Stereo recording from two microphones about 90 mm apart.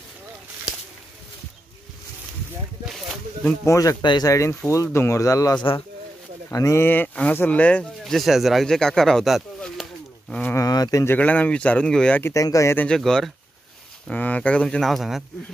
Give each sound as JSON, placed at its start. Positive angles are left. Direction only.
{"t": 3.6, "sound": "speech", "side_deg": 35}
{"t": 4.0, "sound": "speech", "side_deg": 60}
{"t": 4.3, "sound": "speech", "side_deg": 35}
{"t": 6.8, "sound": "speech", "side_deg": 20}
{"t": 8.0, "sound": "speech", "side_deg": 0}
{"t": 10.5, "sound": "a sound", "side_deg": 40}
{"t": 11.1, "sound": "speech", "side_deg": 15}
{"t": 12.4, "sound": "speech", "side_deg": 40}
{"t": 12.7, "sound": "speech", "side_deg": 10}
{"t": 14.0, "sound": "speech", "side_deg": 15}